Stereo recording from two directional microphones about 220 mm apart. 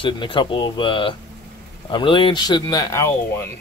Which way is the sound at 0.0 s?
20° left (ahead or behind).